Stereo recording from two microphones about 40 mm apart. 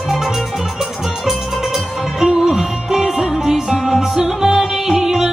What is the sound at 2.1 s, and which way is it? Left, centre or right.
Music, centre.